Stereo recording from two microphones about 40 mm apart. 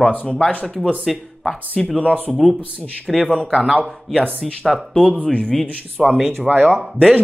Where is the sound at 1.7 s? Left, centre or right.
Left.